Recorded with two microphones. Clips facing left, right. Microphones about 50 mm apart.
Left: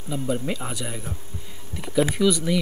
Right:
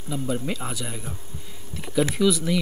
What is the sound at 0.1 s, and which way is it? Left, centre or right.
Speech, centre.